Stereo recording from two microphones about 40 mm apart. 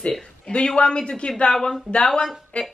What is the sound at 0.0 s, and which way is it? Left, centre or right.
Speech, left.